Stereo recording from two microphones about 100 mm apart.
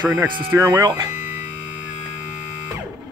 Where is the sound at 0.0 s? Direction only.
20° right (ahead or behind); by 1.1 s 35° right (ahead or behind).